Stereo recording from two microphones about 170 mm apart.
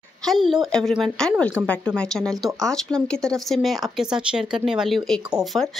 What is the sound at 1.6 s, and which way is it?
Speech, 10° right (ahead or behind).